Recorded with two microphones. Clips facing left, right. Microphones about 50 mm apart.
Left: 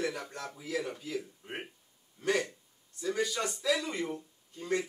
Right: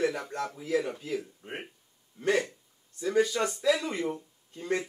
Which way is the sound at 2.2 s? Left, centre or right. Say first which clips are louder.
Right 3 dB; right.